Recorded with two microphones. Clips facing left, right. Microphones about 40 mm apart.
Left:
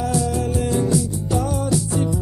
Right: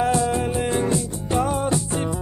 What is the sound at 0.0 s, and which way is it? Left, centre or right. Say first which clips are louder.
Music: right 2 dB; right.